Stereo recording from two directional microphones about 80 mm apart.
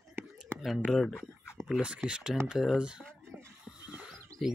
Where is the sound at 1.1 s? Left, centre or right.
Left.